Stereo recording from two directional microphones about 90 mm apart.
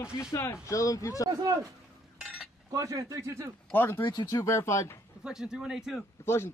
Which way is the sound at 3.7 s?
25° left (ahead or behind).